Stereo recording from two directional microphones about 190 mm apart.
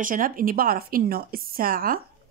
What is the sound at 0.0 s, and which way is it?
Speech, 45° right (ahead or behind).